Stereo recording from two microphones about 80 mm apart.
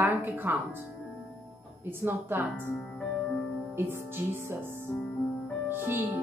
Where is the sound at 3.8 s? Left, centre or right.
Right.